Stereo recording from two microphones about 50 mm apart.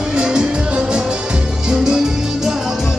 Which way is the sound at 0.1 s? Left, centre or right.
Centre.